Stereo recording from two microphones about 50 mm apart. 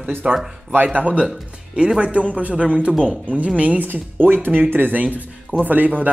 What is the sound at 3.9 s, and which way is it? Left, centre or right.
Speech, right.